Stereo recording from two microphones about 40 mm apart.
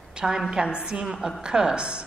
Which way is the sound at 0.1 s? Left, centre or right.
Centre.